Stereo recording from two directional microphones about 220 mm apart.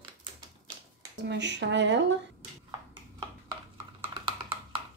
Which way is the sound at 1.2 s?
50° right (ahead or behind).